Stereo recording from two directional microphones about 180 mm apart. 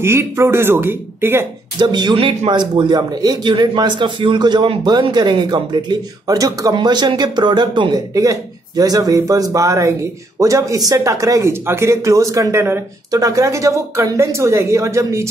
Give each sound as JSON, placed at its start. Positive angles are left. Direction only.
{"t": 0.0, "sound": "speech", "side_deg": -15}
{"t": 1.8, "sound": "a man's voice", "side_deg": -25}